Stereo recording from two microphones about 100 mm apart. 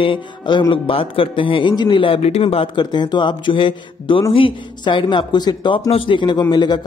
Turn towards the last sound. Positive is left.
turn(degrees=45)  # may be behind; listen again after turning